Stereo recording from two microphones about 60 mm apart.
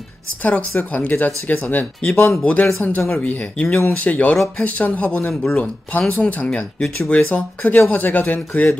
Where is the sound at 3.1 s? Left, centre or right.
Left.